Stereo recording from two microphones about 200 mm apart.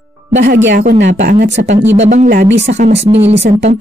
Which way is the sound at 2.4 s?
60° right (ahead or behind).